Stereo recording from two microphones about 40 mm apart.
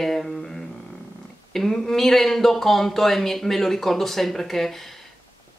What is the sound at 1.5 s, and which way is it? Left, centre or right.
Speech, centre.